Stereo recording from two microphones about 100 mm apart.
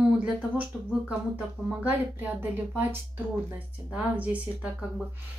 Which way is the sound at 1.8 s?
15° right (ahead or behind).